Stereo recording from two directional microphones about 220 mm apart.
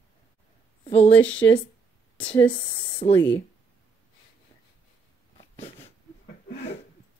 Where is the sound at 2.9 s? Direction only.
20° left (ahead or behind).